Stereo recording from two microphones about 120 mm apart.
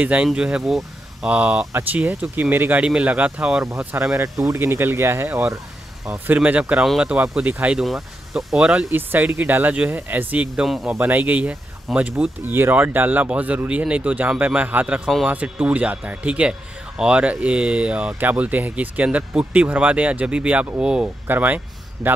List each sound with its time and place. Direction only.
0.0 s speech: 10° right (ahead or behind)
3.6 s speech: 25° right (ahead or behind); by 11.0 s 5° right (ahead or behind)
11.0 s speech: 15° right (ahead or behind)
22.0 s a man's voice: centre (ahead or behind)